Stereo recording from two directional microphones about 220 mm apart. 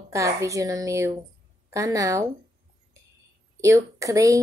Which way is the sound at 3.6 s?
15° right (ahead or behind).